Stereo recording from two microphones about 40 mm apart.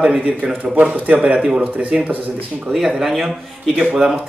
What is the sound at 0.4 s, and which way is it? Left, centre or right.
Speech, right.